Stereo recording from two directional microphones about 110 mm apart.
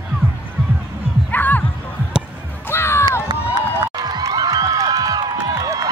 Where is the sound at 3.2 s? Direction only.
40° right (ahead or behind).